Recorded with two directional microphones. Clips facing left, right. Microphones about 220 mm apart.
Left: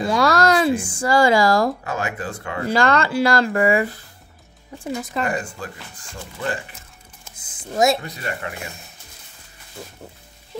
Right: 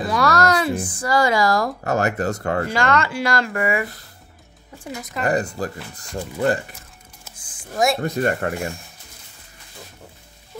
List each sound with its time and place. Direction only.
0.1 s a sound: 30° left (ahead or behind)
1.9 s speech: 40° right (ahead or behind)
2.7 s speech: 35° left (ahead or behind)
5.2 s speech: 35° right (ahead or behind)
7.3 s typing: 20° left (ahead or behind)
8.0 s speech: 50° right (ahead or behind)